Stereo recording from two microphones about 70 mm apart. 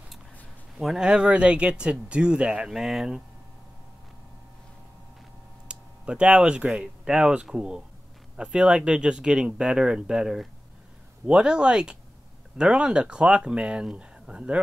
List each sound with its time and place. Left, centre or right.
0.7 s speech: centre
5.7 s speech: centre